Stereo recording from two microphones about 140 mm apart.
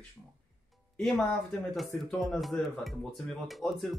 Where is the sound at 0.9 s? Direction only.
Centre (ahead or behind).